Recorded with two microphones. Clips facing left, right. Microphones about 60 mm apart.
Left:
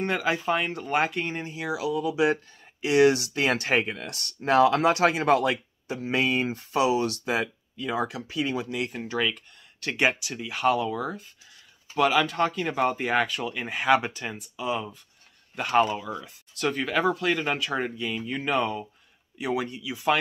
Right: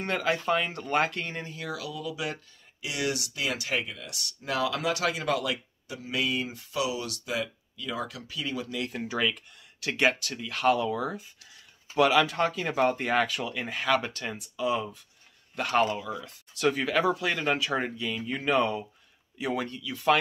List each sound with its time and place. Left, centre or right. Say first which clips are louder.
0.0 s speech: left 2 dB; centre; by 8.9 s left
8.9 s speech: right 1 dB; centre
16.1 s speech: left 1 dB; centre